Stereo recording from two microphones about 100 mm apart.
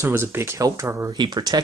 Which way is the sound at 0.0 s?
25° right (ahead or behind).